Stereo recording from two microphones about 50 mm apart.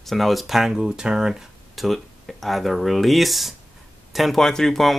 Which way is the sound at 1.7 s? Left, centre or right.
Centre.